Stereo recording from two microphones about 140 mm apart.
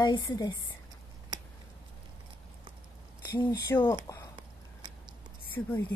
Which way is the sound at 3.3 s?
20° left (ahead or behind).